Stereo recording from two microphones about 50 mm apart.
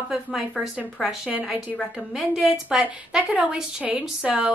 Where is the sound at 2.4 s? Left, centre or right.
Centre.